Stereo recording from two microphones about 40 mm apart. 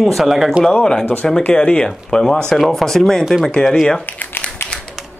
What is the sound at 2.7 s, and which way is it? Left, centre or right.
Speech, centre.